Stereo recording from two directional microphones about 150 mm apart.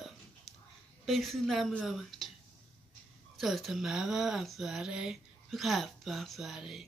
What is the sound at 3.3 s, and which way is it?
Speech, centre (ahead or behind).